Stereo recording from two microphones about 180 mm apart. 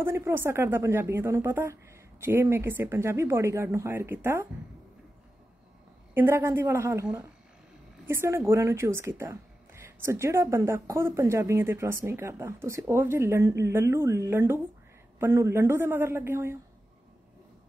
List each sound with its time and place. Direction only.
0.0 s a woman's voice: 15° right (ahead or behind)
6.1 s a woman's voice: 15° right (ahead or behind)